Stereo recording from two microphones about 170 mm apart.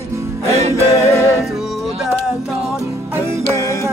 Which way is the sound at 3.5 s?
20° left (ahead or behind).